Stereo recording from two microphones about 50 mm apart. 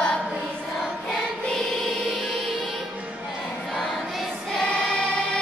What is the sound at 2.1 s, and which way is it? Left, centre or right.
Music, centre.